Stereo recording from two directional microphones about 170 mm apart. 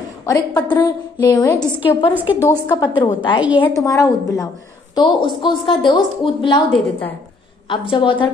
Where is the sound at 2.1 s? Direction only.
10° right (ahead or behind).